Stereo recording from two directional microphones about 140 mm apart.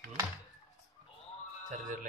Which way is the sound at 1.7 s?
65° right (ahead or behind).